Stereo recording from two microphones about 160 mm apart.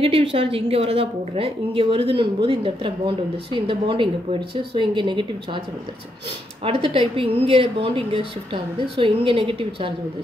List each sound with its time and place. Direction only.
0.0 s a woman's voice: 35° right (ahead or behind)
6.6 s a woman's voice: 35° right (ahead or behind)